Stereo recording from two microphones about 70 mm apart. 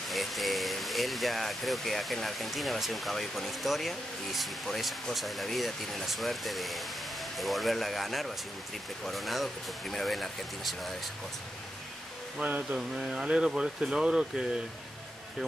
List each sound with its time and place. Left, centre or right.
0.1 s speech: centre
12.4 s a sound: right
12.7 s speech: centre